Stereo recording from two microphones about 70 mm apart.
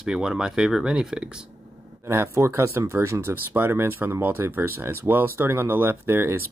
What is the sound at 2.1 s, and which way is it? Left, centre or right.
Speech, right.